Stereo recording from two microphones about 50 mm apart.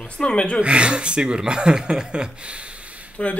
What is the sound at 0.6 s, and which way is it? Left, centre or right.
Speech, right.